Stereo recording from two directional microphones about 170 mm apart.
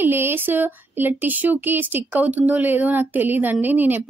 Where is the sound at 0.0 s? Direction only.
10° right (ahead or behind).